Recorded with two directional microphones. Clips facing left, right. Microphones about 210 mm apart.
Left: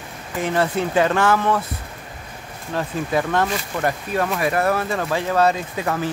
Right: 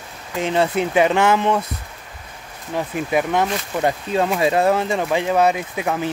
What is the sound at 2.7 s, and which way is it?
Speech, 15° right (ahead or behind).